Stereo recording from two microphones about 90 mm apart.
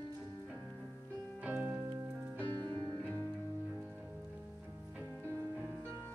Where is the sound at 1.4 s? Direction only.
15° right (ahead or behind).